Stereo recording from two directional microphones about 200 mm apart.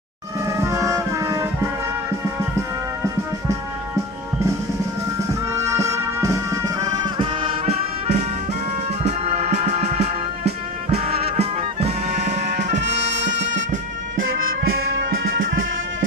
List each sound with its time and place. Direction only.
0.5 s music: 15° right (ahead or behind)
5.3 s music: 15° right (ahead or behind); by 12.8 s 35° right (ahead or behind)
12.8 s brass instrument: 60° right (ahead or behind)
13.7 s music: 40° right (ahead or behind)